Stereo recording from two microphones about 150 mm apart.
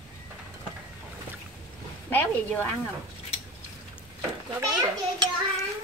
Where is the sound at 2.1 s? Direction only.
15° left (ahead or behind).